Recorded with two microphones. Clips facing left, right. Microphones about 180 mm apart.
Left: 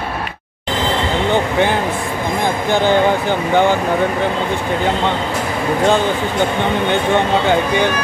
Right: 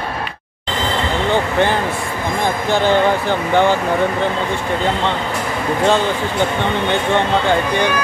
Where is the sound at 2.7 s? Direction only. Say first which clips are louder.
Left 1 dB; 15° left (ahead or behind).